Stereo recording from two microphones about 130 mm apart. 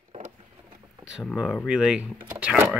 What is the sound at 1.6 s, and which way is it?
Speech, 5° right (ahead or behind).